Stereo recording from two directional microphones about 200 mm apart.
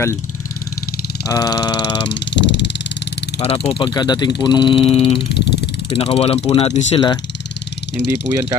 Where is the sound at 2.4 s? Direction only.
60° left (ahead or behind).